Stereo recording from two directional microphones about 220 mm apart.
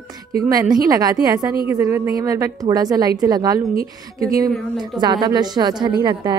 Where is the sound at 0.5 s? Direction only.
15° right (ahead or behind).